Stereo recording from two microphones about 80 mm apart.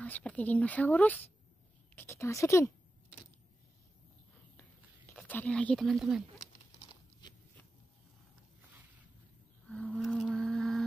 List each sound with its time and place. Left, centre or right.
0.0 s speech: centre
2.0 s a woman's voice: left
5.2 s speech: centre
5.8 s speech: centre
9.7 s a sound: centre
9.9 s a sound: centre